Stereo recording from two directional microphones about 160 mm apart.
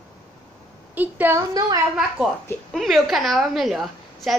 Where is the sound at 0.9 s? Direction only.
10° right (ahead or behind).